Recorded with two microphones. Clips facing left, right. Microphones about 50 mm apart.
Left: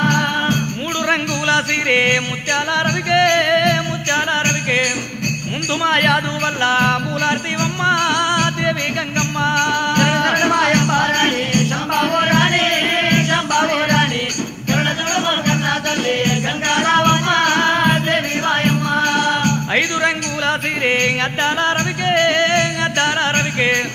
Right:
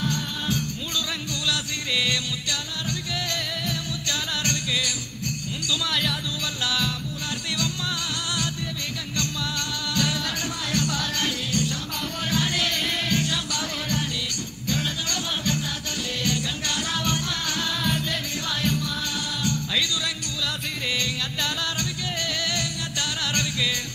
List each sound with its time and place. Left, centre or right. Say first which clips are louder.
0.0 s music: left 12 dB; left
5.9 s music: left 12 dB; left